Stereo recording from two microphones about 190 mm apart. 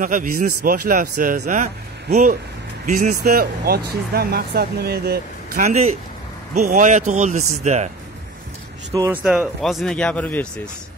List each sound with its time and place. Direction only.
0.0 s speech: 45° right (ahead or behind)
3.0 s speech: 45° right (ahead or behind)
5.6 s speech: 35° right (ahead or behind)
8.9 s speech: 20° right (ahead or behind)
9.2 s speech: 5° right (ahead or behind)